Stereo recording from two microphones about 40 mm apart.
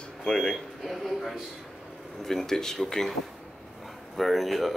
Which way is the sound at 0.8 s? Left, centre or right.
Centre.